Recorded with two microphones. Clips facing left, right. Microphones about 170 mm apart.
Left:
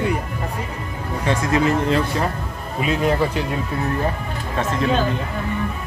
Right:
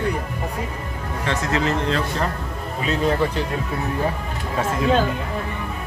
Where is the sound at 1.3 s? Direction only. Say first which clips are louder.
Left 4 dB; 10° left (ahead or behind).